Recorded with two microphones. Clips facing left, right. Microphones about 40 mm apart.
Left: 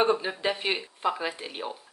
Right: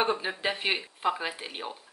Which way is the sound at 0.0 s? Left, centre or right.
Centre.